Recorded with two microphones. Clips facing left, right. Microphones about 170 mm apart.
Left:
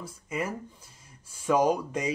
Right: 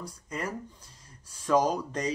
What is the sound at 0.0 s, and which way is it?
Speech, 5° left (ahead or behind).